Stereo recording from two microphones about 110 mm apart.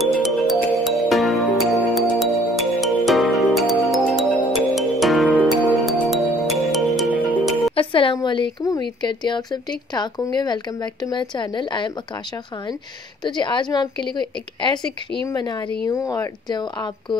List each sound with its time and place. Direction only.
0.0 s music: centre (ahead or behind)
7.1 s music: 15° right (ahead or behind)
7.7 s a woman's voice: 55° left (ahead or behind)
13.2 s a woman's voice: 45° left (ahead or behind)